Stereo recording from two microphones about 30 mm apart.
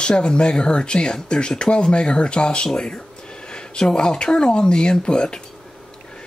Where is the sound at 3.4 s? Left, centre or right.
Left.